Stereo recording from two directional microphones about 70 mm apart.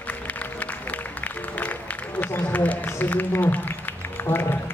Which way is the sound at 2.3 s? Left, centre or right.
Left.